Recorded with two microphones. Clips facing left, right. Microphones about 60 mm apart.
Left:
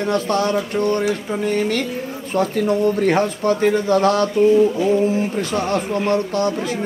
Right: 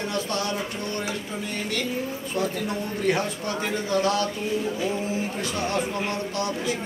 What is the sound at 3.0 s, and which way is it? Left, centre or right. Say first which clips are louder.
A man's voice: left 8 dB; left.